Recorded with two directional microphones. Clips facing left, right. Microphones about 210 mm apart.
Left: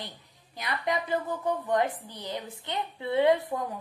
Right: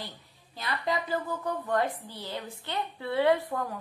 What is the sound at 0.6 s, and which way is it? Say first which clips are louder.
A woman's voice: left 1 dB; 20° left (ahead or behind).